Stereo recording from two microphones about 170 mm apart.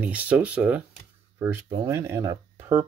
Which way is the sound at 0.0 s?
10° right (ahead or behind).